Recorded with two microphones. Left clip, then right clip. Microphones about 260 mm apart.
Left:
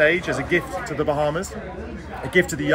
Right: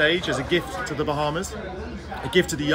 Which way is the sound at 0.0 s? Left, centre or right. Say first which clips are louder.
Left 3 dB; centre.